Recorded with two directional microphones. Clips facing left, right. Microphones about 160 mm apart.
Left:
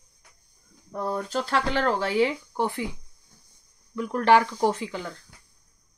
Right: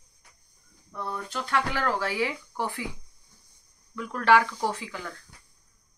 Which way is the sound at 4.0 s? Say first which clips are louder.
Left 2 dB; 20° left (ahead or behind).